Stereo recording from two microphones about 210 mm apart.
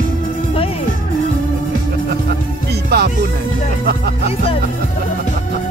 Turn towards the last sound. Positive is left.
turn(degrees=25)  # may be behind; listen again after turning